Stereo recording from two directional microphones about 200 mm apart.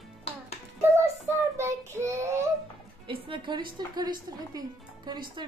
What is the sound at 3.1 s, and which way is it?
A woman's voice, 25° right (ahead or behind).